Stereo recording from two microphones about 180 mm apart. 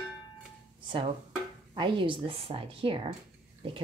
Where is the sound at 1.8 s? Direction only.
30° right (ahead or behind).